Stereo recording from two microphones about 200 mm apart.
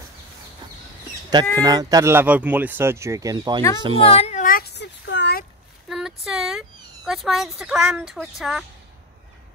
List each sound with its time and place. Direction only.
1.3 s speech: 20° right (ahead or behind)
4.0 s child singing: 30° left (ahead or behind); by 5.4 s 60° left (ahead or behind)
5.9 s a sound: centre (ahead or behind)
7.2 s a woman's voice: centre (ahead or behind)